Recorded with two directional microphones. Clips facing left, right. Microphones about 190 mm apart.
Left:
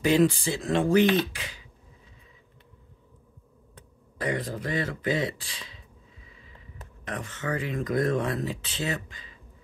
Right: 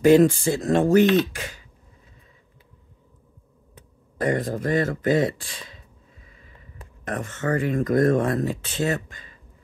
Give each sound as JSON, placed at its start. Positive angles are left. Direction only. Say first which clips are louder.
{"t": 0.0, "sound": "speech", "louder": "right 7 dB", "side_deg": -45}
{"t": 4.2, "sound": "speech", "louder": "right 6 dB", "side_deg": -45}